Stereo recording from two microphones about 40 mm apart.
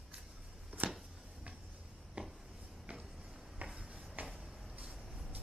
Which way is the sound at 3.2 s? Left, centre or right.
Centre.